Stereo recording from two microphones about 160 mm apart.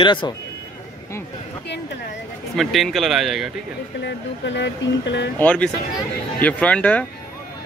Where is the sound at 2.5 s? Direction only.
Centre (ahead or behind).